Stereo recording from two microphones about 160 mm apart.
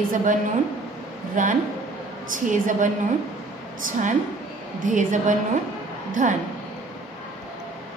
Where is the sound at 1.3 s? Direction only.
55° right (ahead or behind).